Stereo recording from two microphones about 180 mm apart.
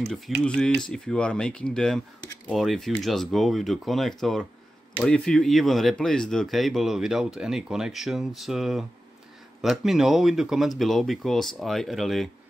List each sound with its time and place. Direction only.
0.1 s speech: 5° left (ahead or behind)